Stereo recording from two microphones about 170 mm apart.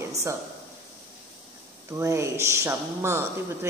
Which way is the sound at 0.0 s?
20° right (ahead or behind).